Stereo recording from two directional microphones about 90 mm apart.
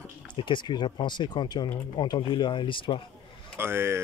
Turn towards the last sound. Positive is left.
turn(degrees=-30)  # may be behind; listen again after turning